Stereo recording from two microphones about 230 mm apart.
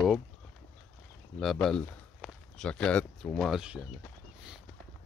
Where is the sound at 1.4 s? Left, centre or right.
Centre.